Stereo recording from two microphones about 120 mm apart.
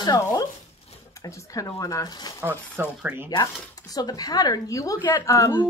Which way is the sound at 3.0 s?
15° right (ahead or behind).